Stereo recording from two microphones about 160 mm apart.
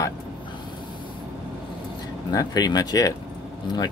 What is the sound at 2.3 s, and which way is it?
Speech, 25° left (ahead or behind).